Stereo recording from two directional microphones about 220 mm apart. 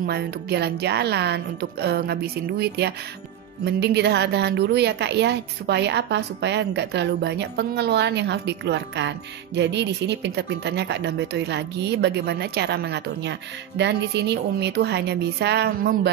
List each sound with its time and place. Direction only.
0.0 s speech: 45° right (ahead or behind)